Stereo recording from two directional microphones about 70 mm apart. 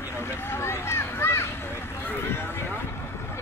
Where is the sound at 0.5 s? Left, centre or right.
Left.